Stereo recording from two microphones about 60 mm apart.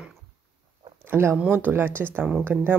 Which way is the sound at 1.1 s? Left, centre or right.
Right.